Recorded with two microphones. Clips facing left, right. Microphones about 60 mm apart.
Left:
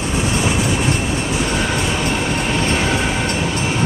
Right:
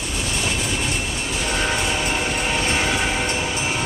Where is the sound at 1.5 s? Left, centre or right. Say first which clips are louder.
Left 3 dB; centre.